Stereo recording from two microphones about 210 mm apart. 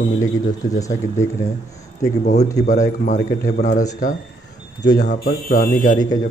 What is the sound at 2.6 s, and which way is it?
Speech, 35° left (ahead or behind).